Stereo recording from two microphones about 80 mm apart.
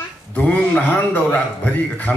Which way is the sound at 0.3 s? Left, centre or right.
Centre.